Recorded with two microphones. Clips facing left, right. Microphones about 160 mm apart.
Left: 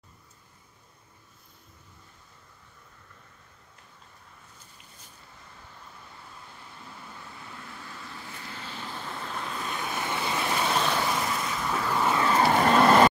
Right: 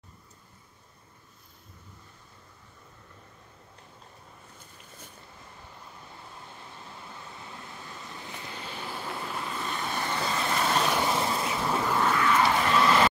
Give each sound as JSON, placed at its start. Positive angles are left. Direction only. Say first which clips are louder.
{"t": 7.6, "sound": "vehicle", "louder": "even", "side_deg": -20}
{"t": 10.9, "sound": "vehicle", "louder": "right 1 dB", "side_deg": -15}
{"t": 11.1, "sound": "a sound", "louder": "right 2 dB", "side_deg": -30}
{"t": 11.7, "sound": "a sound", "louder": "even", "side_deg": -10}
{"t": 12.2, "sound": "vehicle", "louder": "left 2 dB", "side_deg": 35}
{"t": 12.4, "sound": "vehicle", "louder": "left 4 dB", "side_deg": 50}